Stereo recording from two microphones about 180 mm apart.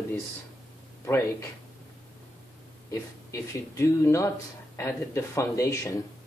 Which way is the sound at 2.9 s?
15° left (ahead or behind).